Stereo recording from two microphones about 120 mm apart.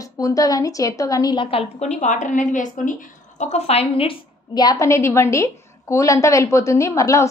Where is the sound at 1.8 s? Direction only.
75° left (ahead or behind); by 4.2 s 50° left (ahead or behind).